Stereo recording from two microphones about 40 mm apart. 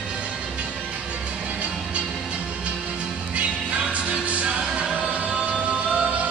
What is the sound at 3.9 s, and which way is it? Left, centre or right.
Music, right.